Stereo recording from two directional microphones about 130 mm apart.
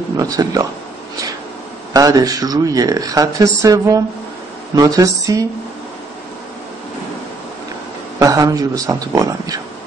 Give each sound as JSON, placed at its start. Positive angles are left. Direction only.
{"t": 0.2, "sound": "speech", "side_deg": -30}
{"t": 2.0, "sound": "speech", "side_deg": -30}
{"t": 8.2, "sound": "speech", "side_deg": -25}